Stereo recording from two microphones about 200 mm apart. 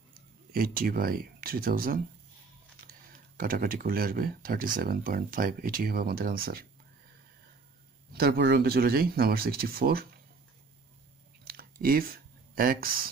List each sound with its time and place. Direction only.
0.5 s speech: 45° right (ahead or behind)
3.3 s speech: 45° right (ahead or behind)
8.1 s speech: 50° right (ahead or behind)
11.4 s a sound: 45° right (ahead or behind)